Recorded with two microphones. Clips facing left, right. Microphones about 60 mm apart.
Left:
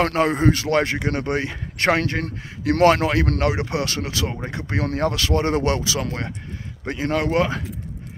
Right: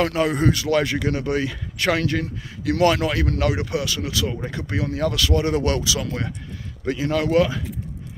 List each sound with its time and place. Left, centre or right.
0.0 s speech: left